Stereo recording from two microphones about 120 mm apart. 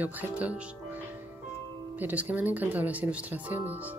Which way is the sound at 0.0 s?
15° right (ahead or behind).